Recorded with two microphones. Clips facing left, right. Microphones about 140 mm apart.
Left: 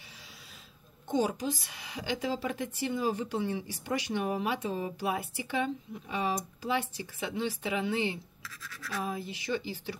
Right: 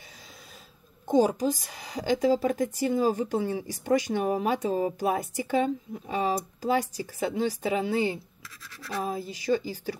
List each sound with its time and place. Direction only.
1.0 s a woman's voice: 40° right (ahead or behind)